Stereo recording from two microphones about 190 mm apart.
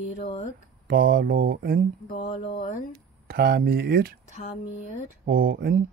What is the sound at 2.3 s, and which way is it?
Speech, 30° left (ahead or behind).